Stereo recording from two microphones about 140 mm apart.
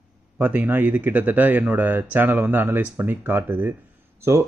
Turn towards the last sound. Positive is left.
turn(degrees=-20)  # may be behind; listen again after turning